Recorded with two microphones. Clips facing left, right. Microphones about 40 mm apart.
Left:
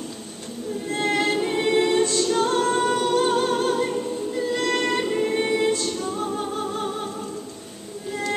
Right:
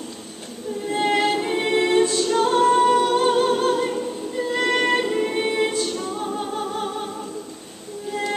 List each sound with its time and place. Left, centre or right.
0.8 s a capella: centre
4.4 s music: centre